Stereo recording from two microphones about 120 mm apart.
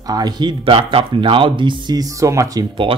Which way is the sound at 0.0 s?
35° right (ahead or behind).